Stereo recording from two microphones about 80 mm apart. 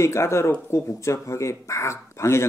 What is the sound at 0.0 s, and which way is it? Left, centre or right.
Speech, left.